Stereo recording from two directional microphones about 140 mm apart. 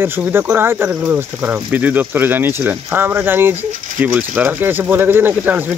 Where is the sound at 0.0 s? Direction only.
15° right (ahead or behind).